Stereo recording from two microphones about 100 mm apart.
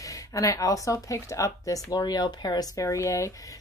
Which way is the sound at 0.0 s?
35° left (ahead or behind).